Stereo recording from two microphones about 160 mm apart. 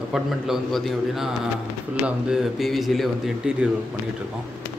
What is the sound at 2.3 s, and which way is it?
Speech, centre (ahead or behind).